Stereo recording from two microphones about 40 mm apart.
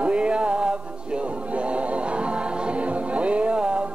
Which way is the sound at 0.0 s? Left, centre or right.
Right.